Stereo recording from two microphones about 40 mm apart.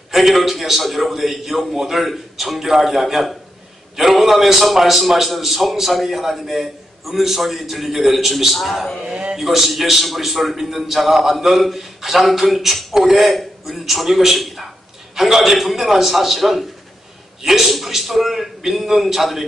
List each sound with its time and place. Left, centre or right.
0.1 s a man's voice: centre
9.1 s speech: right
9.4 s a man's voice: centre